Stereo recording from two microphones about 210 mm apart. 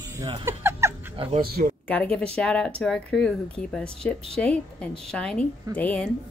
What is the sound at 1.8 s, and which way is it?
A woman's voice, 5° left (ahead or behind).